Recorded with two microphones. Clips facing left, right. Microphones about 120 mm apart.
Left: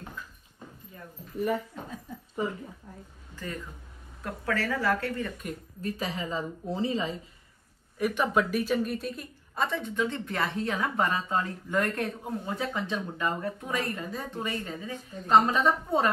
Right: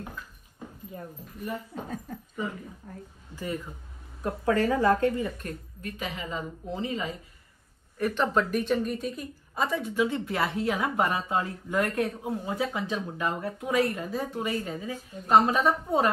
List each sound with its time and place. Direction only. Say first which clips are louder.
3.3 s speech: right 4 dB; 15° right (ahead or behind)
4.2 s speech: right 6 dB; 25° right (ahead or behind)
5.8 s a woman's voice: left 4 dB; 35° left (ahead or behind)
8.0 s a woman's voice: even; 10° left (ahead or behind); by 16.1 s 5° right (ahead or behind)